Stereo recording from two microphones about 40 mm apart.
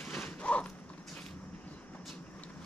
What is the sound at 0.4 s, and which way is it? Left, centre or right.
Creak, left.